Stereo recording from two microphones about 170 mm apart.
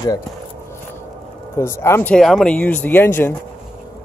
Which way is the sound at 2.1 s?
5° left (ahead or behind).